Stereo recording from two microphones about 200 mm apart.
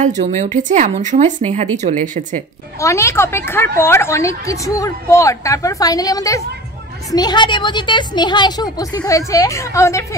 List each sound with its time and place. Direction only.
0.2 s speech: 35° right (ahead or behind)
2.8 s a woman's voice: 15° left (ahead or behind)